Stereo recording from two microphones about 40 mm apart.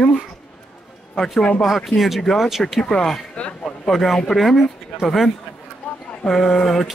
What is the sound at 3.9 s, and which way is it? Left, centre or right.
Speech, centre.